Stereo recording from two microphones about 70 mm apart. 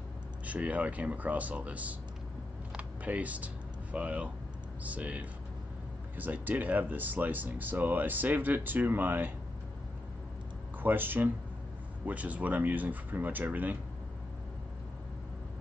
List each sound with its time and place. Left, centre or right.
0.5 s speech: right
2.7 s computer keyboard: centre
3.9 s speech: centre
10.8 s speech: right